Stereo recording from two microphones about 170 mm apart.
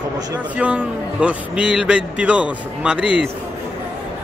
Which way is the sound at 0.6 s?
5° right (ahead or behind).